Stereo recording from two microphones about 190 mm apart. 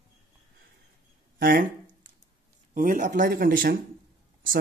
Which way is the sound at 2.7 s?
45° right (ahead or behind).